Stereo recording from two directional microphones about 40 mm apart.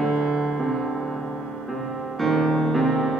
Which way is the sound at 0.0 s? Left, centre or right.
Centre.